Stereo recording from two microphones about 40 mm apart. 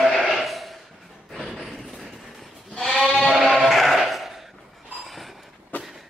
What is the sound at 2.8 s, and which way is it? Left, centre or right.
Sheep, centre.